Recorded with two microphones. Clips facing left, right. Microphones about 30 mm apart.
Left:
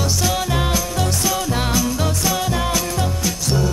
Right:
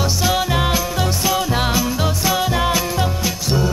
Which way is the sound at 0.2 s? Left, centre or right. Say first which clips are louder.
Right 4 dB; centre.